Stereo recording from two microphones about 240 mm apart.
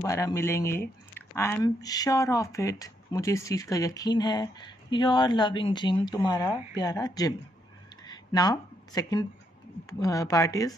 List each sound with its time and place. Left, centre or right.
0.0 s speech: centre
8.0 s a sound: centre
9.8 s speech: centre